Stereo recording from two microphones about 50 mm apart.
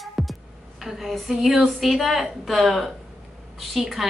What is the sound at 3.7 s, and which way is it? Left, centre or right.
Speech, centre.